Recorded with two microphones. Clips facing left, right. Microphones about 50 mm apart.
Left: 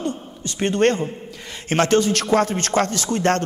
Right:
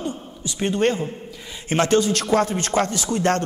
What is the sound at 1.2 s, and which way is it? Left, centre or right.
A man's voice, left.